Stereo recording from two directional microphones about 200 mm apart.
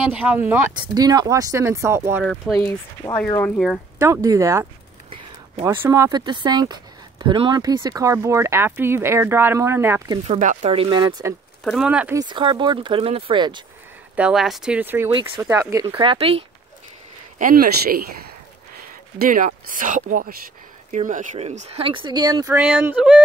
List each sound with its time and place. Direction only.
0.1 s speech: 10° right (ahead or behind)
2.2 s speech: centre (ahead or behind)
4.0 s speech: 15° right (ahead or behind)
10.2 s speech: 35° right (ahead or behind); by 11.3 s 20° right (ahead or behind)
11.6 s speech: centre (ahead or behind)
12.2 s speech: 25° right (ahead or behind)
14.1 s speech: 5° right (ahead or behind); by 16.4 s 30° right (ahead or behind)
17.4 s speech: 45° right (ahead or behind)
19.1 s speech: 45° right (ahead or behind); by 23.2 s 5° right (ahead or behind)